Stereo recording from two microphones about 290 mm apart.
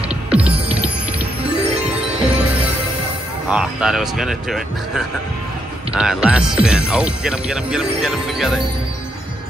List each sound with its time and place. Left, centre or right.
0.3 s music: centre
2.0 s music: centre
3.4 s speech: centre